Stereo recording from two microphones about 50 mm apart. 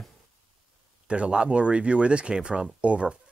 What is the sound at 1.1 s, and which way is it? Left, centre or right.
Speech, right.